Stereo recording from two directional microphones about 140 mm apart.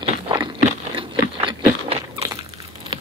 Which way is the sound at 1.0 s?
40° right (ahead or behind).